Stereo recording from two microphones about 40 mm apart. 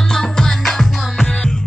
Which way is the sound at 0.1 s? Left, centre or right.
Centre.